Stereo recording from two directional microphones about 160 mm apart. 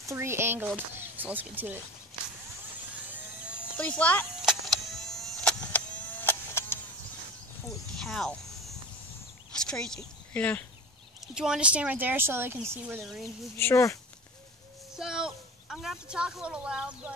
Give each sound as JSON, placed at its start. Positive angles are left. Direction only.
{"t": 0.0, "sound": "speech", "side_deg": -15}
{"t": 3.7, "sound": "speech", "side_deg": 10}
{"t": 4.4, "sound": "vehicle", "side_deg": 0}
{"t": 8.0, "sound": "a sound", "side_deg": 5}
{"t": 10.3, "sound": "speech", "side_deg": 10}
{"t": 11.3, "sound": "speech", "side_deg": -5}
{"t": 13.0, "sound": "speech", "side_deg": 0}
{"t": 13.6, "sound": "speech", "side_deg": 15}
{"t": 15.0, "sound": "speech", "side_deg": -5}